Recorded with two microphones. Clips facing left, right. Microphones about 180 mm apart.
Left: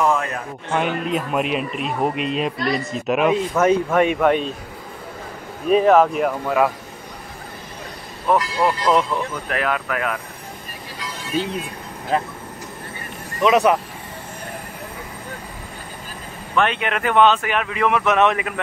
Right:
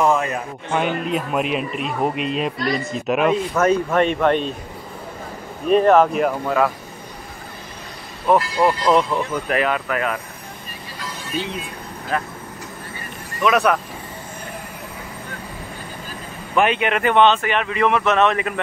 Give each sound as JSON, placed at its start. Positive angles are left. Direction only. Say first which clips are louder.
{"t": 0.0, "sound": "a man's voice", "louder": "right 2 dB", "side_deg": -5}
{"t": 5.7, "sound": "a man's voice", "louder": "even", "side_deg": 0}
{"t": 8.3, "sound": "a man's voice", "louder": "right 2 dB", "side_deg": -5}
{"t": 12.1, "sound": "speech", "louder": "left 3 dB", "side_deg": 25}
{"t": 13.4, "sound": "speech", "louder": "left 2 dB", "side_deg": 20}
{"t": 16.5, "sound": "a man's voice", "louder": "right 2 dB", "side_deg": -5}